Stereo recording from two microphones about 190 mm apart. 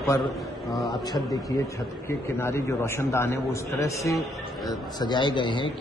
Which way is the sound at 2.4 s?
15° left (ahead or behind).